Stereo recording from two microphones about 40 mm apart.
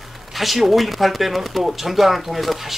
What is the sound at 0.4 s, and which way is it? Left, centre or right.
Speech, centre.